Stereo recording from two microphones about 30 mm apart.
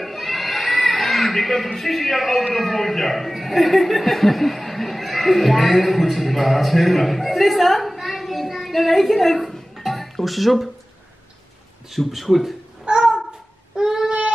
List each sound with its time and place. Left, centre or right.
0.0 s a sound: centre
2.5 s speech: centre
12.1 s speech: centre
12.8 s babbling: right
13.7 s child singing: right